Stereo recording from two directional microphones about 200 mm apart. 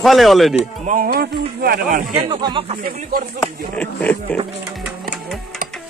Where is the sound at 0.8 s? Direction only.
45° right (ahead or behind).